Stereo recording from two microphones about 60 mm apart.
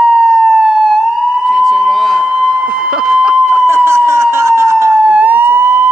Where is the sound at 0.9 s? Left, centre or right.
Centre.